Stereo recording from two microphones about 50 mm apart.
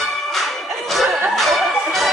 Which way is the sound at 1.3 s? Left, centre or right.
Centre.